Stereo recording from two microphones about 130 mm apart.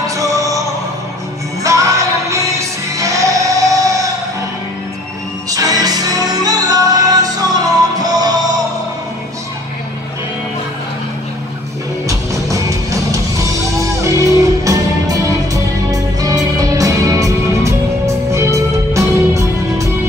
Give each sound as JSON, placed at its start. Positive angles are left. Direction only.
{"t": 0.0, "sound": "music", "side_deg": -25}
{"t": 5.5, "sound": "music", "side_deg": -30}
{"t": 12.1, "sound": "music", "side_deg": -25}